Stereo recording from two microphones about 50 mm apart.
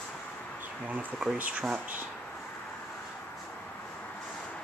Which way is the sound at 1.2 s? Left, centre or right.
Centre.